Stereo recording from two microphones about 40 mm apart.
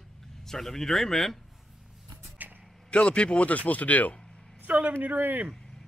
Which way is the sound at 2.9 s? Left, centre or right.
Left.